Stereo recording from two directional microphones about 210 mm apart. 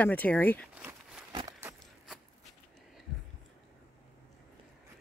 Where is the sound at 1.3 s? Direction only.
20° right (ahead or behind).